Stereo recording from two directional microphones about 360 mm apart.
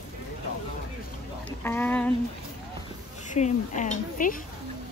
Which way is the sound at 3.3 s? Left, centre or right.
Centre.